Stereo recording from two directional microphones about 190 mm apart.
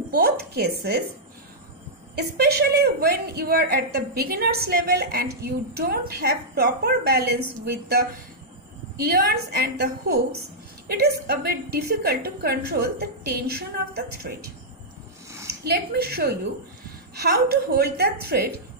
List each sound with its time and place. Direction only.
0.1 s a woman's voice: 55° right (ahead or behind)
2.1 s a woman's voice: 55° right (ahead or behind)
8.9 s a woman's voice: 55° right (ahead or behind)
15.6 s a woman's voice: 55° right (ahead or behind)